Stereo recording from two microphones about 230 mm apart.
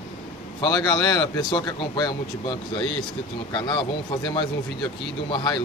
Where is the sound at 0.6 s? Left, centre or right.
Centre.